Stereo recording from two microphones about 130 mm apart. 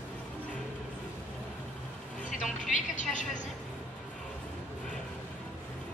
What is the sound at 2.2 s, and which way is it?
Vehicle, 75° left (ahead or behind).